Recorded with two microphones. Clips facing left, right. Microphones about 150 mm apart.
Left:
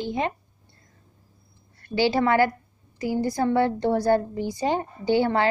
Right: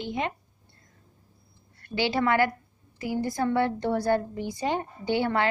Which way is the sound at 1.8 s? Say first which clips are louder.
Left 4 dB; 35° left (ahead or behind).